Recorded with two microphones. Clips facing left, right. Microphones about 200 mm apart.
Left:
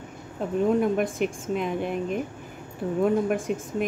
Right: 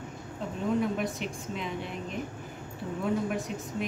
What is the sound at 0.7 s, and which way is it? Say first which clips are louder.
Speech: left 6 dB; 50° left (ahead or behind).